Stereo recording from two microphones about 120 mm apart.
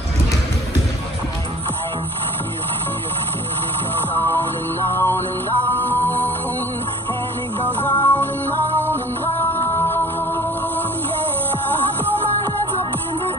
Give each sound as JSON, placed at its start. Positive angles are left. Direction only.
{"t": 4.3, "sound": "music", "side_deg": 20}
{"t": 7.8, "sound": "music", "side_deg": 15}